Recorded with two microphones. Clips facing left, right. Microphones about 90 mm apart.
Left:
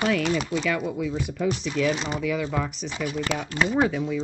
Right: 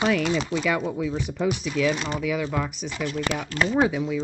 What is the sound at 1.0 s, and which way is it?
Speech, 20° right (ahead or behind).